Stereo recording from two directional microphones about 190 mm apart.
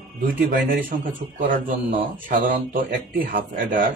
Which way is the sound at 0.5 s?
50° right (ahead or behind).